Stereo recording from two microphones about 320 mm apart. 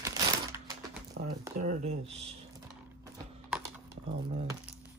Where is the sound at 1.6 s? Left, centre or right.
Right.